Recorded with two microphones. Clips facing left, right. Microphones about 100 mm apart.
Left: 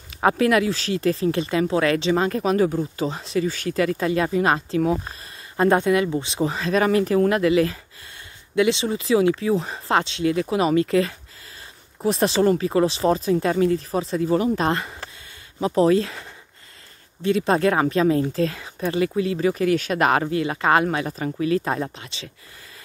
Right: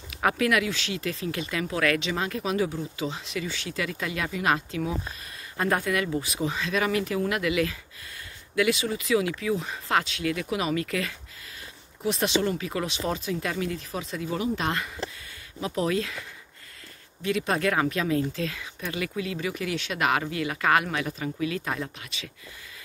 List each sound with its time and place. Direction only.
0.1 s speech: 30° left (ahead or behind)
5.6 s speech: 25° left (ahead or behind)